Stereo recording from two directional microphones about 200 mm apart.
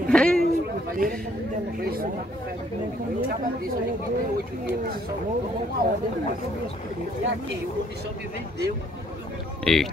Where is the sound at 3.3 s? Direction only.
45° right (ahead or behind).